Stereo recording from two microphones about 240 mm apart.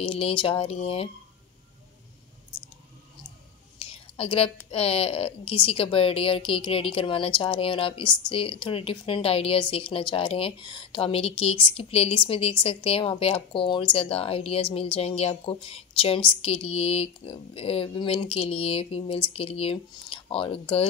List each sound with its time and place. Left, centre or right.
0.0 s a woman's voice: left
3.8 s whispering: left
4.6 s a woman's voice: left